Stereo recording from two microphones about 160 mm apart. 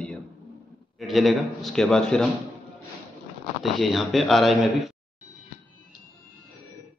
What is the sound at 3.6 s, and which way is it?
A man's voice, centre (ahead or behind).